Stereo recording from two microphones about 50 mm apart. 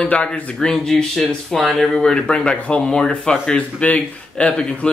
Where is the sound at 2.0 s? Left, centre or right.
Centre.